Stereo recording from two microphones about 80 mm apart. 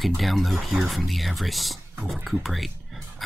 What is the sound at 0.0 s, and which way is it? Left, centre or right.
Speech, centre.